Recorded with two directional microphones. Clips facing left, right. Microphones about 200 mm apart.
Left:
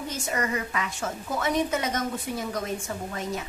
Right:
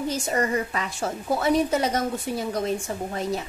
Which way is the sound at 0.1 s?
30° right (ahead or behind).